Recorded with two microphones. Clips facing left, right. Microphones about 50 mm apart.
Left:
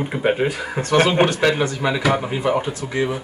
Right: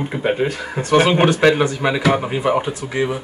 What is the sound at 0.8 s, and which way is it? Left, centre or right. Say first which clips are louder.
Speech: right 2 dB; centre.